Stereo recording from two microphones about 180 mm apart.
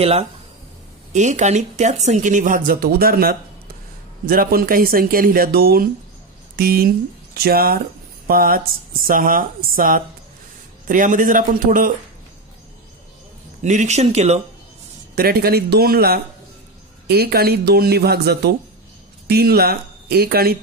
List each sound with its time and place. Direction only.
0.0 s speech: 35° right (ahead or behind)
13.6 s speech: 40° right (ahead or behind)
15.1 s speech: 60° right (ahead or behind)